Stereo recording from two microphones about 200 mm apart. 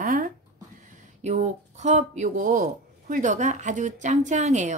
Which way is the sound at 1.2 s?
35° right (ahead or behind).